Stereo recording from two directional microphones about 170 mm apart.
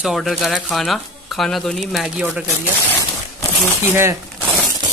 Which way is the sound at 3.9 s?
15° right (ahead or behind).